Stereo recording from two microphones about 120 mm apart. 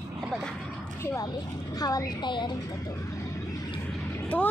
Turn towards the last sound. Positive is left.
turn(degrees=15)  # may be behind; listen again after turning